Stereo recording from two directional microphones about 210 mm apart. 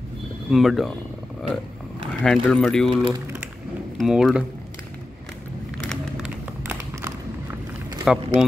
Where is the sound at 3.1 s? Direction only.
20° right (ahead or behind).